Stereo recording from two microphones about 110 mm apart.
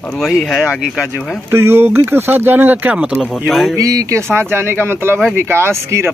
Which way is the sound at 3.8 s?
30° right (ahead or behind).